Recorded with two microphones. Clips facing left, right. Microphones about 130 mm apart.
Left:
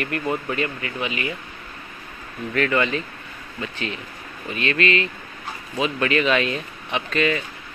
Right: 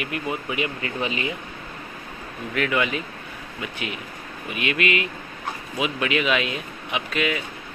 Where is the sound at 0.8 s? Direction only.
30° right (ahead or behind).